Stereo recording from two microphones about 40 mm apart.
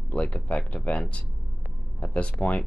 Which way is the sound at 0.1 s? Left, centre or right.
Left.